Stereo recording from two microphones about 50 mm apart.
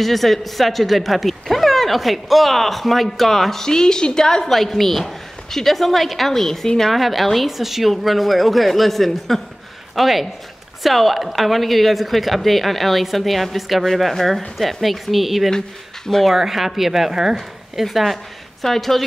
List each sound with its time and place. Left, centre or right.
0.0 s speech: centre